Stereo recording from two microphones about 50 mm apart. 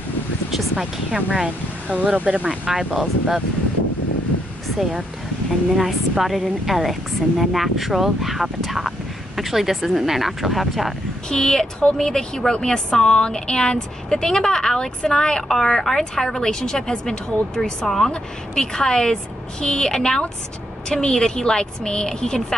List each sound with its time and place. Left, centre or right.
0.5 s speech: centre
5.8 s speech: centre
11.2 s a woman's voice: centre